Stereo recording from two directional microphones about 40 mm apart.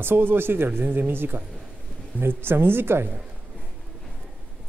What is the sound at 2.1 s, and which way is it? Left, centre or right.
Speech, right.